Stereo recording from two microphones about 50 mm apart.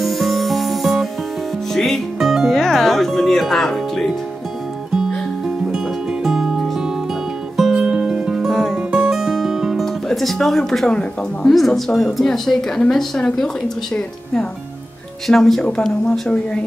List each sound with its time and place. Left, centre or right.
0.0 s music: centre
2.1 s music: centre
2.5 s music: centre
6.2 s music: centre
8.4 s music: centre
8.7 s music: centre
10.0 s a woman's voice: centre
10.9 s speech: centre
11.5 s a woman's voice: centre
15.2 s a woman's voice: centre